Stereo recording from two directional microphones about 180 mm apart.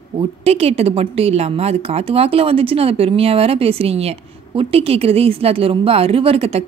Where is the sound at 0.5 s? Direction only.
35° right (ahead or behind).